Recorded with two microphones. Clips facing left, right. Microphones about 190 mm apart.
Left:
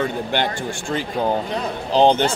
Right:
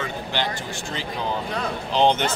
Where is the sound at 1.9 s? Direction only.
35° left (ahead or behind).